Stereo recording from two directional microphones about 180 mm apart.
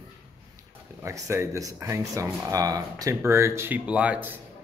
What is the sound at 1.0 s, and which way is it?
Speech, 15° right (ahead or behind).